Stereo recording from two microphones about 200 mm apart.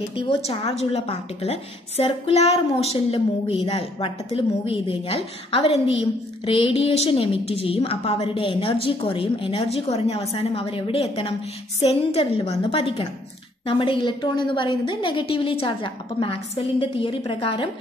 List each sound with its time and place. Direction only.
0.1 s a woman's voice: 30° left (ahead or behind)